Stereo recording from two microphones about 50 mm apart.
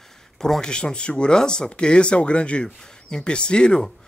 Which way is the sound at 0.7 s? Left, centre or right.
Left.